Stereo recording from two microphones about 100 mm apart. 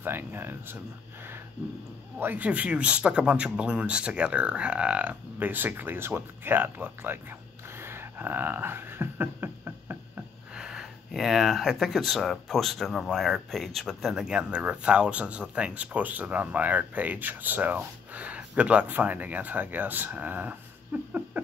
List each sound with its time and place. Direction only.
0.0 s speech: 20° right (ahead or behind)
2.1 s speech: 20° right (ahead or behind)
10.5 s speech: 5° right (ahead or behind)